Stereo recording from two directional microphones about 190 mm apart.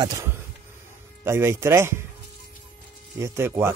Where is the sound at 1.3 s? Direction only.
15° right (ahead or behind).